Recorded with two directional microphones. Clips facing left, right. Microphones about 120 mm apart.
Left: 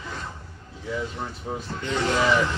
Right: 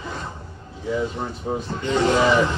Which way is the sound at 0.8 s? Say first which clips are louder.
Right 6 dB; 20° right (ahead or behind).